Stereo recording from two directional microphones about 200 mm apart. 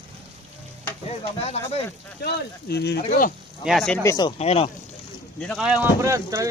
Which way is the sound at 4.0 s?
20° left (ahead or behind).